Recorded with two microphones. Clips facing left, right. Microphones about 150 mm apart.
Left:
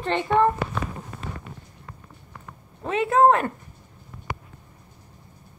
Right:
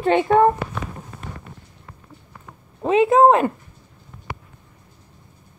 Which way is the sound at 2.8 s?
20° right (ahead or behind).